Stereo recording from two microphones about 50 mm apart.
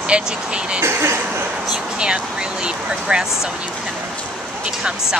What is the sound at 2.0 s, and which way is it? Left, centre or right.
Speech, centre.